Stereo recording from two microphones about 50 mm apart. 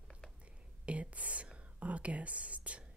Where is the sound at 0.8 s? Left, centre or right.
Right.